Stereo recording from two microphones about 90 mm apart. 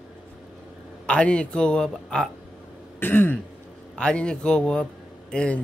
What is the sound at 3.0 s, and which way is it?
Throat clearing, 20° left (ahead or behind).